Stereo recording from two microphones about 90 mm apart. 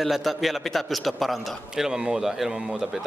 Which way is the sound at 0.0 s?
Centre (ahead or behind).